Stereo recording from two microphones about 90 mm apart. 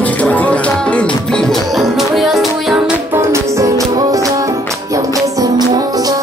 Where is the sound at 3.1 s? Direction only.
30° right (ahead or behind).